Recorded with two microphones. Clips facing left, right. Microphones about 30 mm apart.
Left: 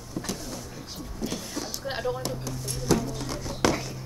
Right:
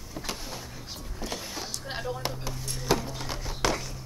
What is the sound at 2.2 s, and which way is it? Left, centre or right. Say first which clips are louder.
Speech: left 1 dB; right.